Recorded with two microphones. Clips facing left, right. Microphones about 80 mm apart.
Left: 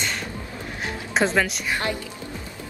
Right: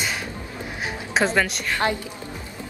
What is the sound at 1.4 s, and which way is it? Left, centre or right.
Speech, centre.